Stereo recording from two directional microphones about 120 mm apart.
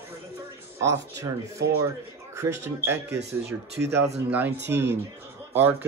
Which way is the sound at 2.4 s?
20° right (ahead or behind).